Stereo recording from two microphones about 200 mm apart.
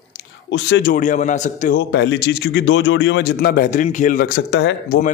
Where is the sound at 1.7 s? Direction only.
60° left (ahead or behind).